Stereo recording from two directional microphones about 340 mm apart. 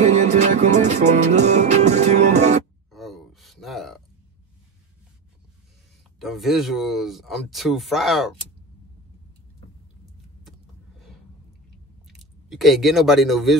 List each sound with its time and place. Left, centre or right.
0.0 s music: right
2.9 s a sound: centre
6.1 s speech: centre
12.1 s speech: centre